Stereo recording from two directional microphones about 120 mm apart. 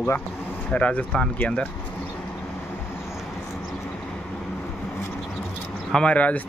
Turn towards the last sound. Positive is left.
turn(degrees=10)  # may be behind; listen again after turning